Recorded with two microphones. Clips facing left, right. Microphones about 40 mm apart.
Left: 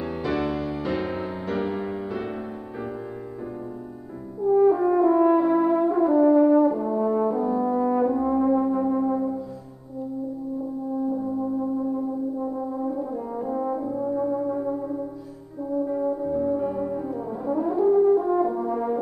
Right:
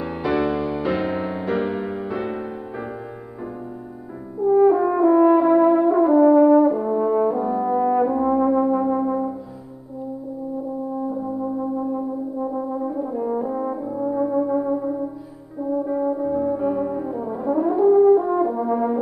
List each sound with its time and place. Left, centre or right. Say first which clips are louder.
0.0 s music: right 4 dB; centre
4.4 s french horn: right 3 dB; centre
11.1 s brass instrument: right 1 dB; centre